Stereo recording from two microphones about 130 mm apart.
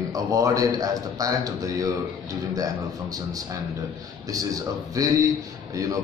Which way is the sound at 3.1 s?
25° right (ahead or behind).